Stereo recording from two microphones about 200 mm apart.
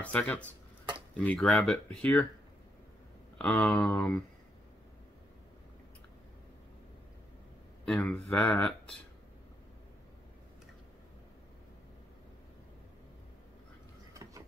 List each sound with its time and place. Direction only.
0.0 s speech: 10° left (ahead or behind)
3.3 s speech: 5° left (ahead or behind)
7.8 s speech: 5° left (ahead or behind)